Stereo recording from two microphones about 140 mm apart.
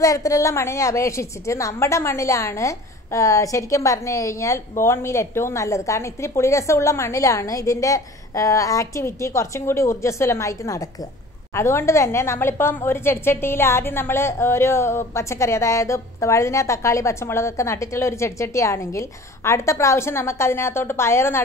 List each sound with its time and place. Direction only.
0.0 s a woman's voice: 25° left (ahead or behind)